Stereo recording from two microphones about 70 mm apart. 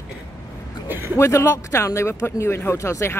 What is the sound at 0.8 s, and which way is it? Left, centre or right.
Speech, right.